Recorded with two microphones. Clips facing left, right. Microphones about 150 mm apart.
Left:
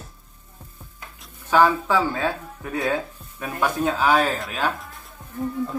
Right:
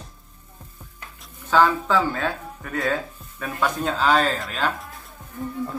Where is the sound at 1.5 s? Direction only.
10° left (ahead or behind).